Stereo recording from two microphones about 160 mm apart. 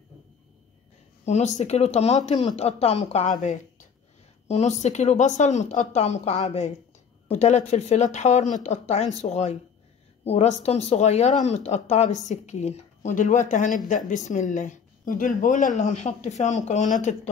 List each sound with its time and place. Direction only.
1.2 s speech: 45° left (ahead or behind)